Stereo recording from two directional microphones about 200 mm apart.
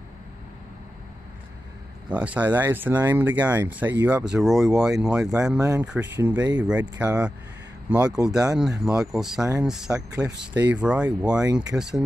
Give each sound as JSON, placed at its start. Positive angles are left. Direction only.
{"t": 2.0, "sound": "speech", "side_deg": -5}
{"t": 5.6, "sound": "speech", "side_deg": -15}